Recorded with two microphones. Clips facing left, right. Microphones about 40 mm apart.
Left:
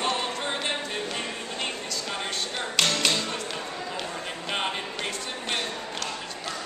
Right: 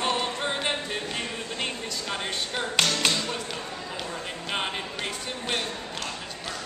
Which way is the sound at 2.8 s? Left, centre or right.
Centre.